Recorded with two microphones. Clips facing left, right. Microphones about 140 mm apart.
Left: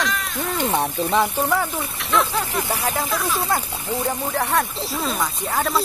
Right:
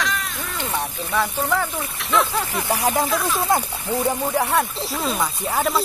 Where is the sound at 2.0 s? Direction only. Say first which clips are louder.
Even; centre (ahead or behind).